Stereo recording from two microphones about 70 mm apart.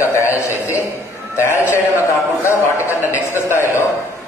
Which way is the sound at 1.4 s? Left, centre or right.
Left.